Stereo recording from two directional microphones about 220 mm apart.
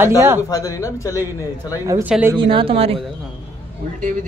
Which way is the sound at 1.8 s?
15° right (ahead or behind).